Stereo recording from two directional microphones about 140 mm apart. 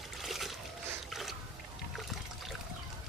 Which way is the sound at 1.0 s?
Centre (ahead or behind).